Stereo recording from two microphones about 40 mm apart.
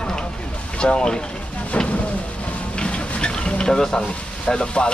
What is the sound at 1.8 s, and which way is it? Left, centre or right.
Speech, left.